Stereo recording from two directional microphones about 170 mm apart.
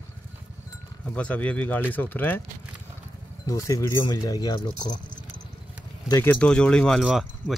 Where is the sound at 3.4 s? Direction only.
20° left (ahead or behind).